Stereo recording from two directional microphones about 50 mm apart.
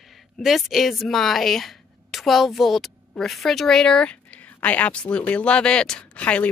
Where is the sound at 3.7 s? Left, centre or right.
Centre.